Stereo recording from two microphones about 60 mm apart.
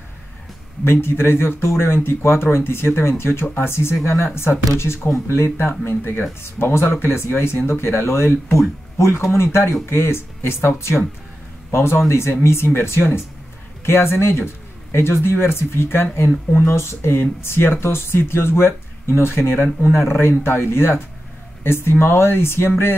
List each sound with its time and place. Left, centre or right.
0.8 s speech: left
11.7 s speech: left